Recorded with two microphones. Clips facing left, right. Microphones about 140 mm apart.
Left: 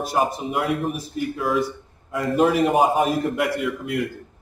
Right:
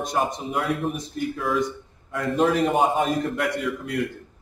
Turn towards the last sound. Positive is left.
turn(degrees=0)  # may be behind; listen again after turning